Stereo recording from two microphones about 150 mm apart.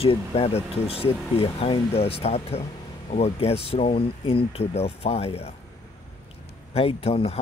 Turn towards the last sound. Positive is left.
turn(degrees=40)  # may be behind; listen again after turning